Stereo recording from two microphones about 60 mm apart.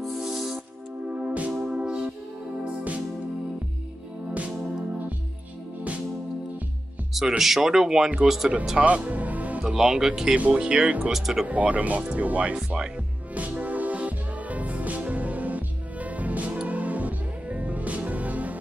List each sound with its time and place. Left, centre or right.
0.2 s music: centre
1.1 s music: right
1.5 s music: centre
1.8 s music: centre
7.2 s speech: centre
8.6 s music: centre
9.8 s speech: centre
10.3 s speech: right
11.1 s speech: centre
11.4 s speech: right
12.5 s speech: centre
13.3 s music: right